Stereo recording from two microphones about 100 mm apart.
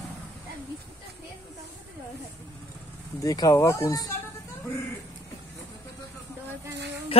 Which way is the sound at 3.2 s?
35° left (ahead or behind).